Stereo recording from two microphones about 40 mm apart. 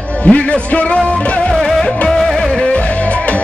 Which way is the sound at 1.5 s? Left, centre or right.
Centre.